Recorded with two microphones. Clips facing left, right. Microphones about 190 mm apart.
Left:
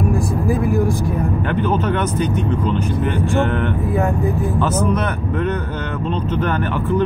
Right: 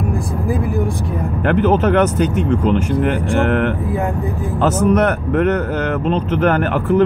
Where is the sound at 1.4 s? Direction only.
80° right.